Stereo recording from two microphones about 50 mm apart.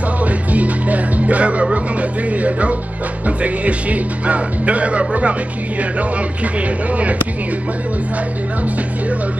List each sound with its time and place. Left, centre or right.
0.2 s speech: right